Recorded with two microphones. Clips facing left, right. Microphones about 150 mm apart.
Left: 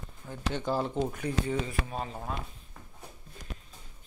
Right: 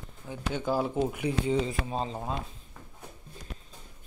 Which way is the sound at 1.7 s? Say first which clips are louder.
Right 3 dB; 25° right (ahead or behind).